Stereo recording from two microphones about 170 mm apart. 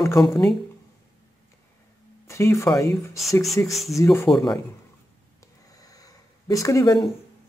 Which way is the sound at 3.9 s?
15° left (ahead or behind).